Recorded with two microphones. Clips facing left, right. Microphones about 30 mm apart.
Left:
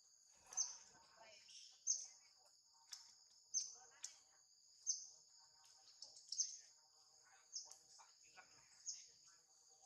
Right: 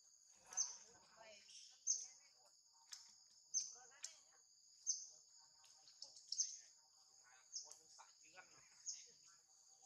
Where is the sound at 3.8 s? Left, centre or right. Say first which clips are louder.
Right 1 dB; right.